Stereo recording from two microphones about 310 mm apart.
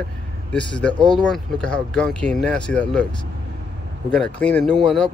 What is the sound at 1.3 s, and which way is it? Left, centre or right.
Speech, centre.